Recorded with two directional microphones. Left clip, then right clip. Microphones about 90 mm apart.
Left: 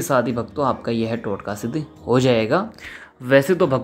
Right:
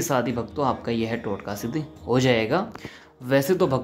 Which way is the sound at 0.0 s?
25° left (ahead or behind).